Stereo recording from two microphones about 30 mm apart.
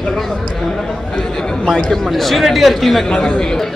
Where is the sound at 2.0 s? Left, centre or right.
Centre.